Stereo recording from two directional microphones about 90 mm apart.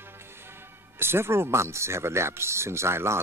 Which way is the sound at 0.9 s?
25° right (ahead or behind).